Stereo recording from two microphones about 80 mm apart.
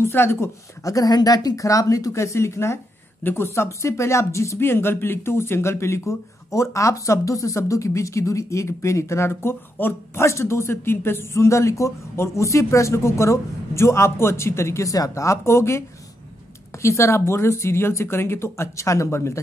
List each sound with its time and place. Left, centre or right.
0.0 s speech: left
0.8 s speech: left